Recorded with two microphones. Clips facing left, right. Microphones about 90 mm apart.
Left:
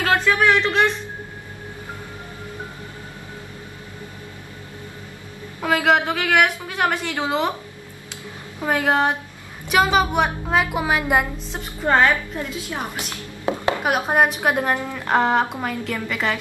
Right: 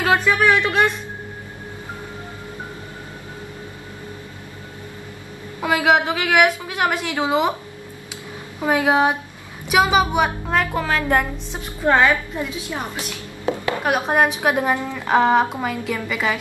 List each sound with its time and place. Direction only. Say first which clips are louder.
0.0 s a sound: right 1 dB; 15° right (ahead or behind)
0.5 s speech: right 1 dB; 15° right (ahead or behind)
5.6 s a woman's voice: right 1 dB; 5° right (ahead or behind)
8.5 s a woman's voice: right 2 dB; 10° right (ahead or behind)
10.6 s a woman's voice: right 1 dB; 15° left (ahead or behind)
11.5 s a woman's voice: right 1 dB; centre (ahead or behind)
13.8 s a woman's voice: right 1 dB; 5° left (ahead or behind)